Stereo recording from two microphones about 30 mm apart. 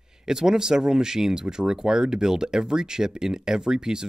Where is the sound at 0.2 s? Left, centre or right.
Right.